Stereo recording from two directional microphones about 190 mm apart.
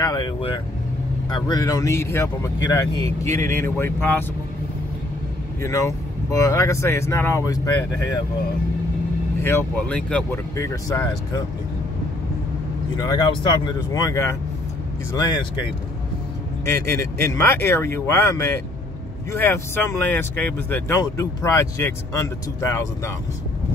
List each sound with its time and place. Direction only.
0.0 s speech: 20° left (ahead or behind)
5.6 s speech: 15° left (ahead or behind)
9.4 s speech: 10° left (ahead or behind)
12.9 s speech: 20° left (ahead or behind)
16.6 s speech: 15° left (ahead or behind)